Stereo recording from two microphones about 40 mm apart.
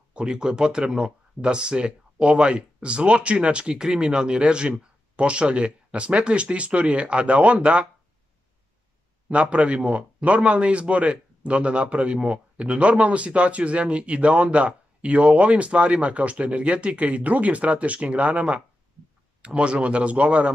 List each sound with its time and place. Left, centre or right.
0.1 s speech: right
9.3 s a man's voice: right